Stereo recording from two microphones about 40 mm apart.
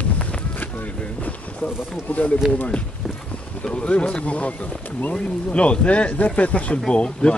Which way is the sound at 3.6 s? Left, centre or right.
Left.